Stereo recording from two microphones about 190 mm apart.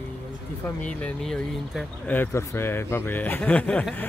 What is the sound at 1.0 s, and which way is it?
Speech, centre (ahead or behind).